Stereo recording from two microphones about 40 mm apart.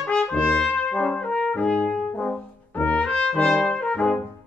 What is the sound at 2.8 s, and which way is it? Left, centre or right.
Trumpet, left.